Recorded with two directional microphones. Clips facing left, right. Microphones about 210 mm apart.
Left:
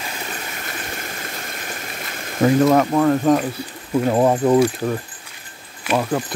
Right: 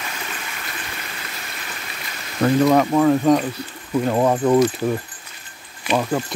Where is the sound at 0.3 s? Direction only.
45° left (ahead or behind).